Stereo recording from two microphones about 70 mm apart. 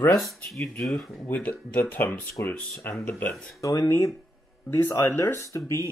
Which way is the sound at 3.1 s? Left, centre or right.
Left.